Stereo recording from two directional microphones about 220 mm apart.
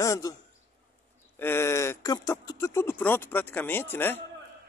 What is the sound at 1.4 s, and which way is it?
Speech, 10° left (ahead or behind).